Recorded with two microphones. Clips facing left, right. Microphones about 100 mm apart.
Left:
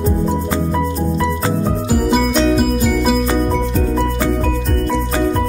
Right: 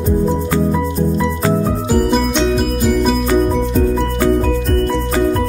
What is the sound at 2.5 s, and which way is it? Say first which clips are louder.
Music: even; 5° left (ahead or behind).